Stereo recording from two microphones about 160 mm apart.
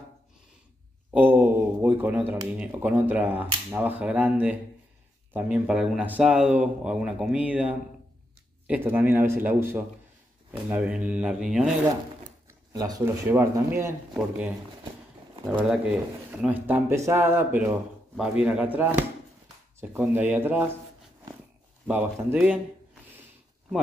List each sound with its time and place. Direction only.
1.1 s speech: 10° right (ahead or behind)
12.7 s speech: 20° right (ahead or behind)
15.6 s speech: 5° right (ahead or behind)
21.8 s speech: 10° right (ahead or behind)